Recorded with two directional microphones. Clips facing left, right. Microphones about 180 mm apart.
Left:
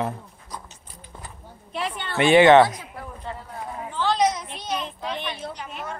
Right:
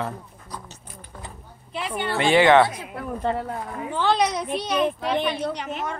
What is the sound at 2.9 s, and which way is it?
A child's voice, 70° right (ahead or behind).